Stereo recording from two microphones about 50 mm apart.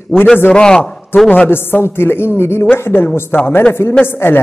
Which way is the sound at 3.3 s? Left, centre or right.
Left.